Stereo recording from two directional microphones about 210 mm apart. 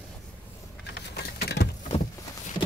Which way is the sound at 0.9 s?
50° left (ahead or behind).